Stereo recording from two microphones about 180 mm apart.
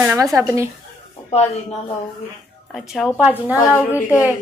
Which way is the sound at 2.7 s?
Centre (ahead or behind).